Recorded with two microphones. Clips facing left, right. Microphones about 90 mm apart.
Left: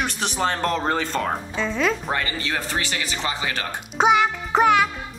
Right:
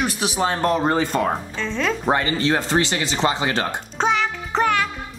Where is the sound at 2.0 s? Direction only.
30° right (ahead or behind).